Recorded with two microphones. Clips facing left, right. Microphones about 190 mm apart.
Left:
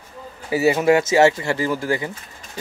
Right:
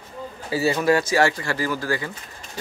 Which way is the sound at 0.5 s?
20° left (ahead or behind).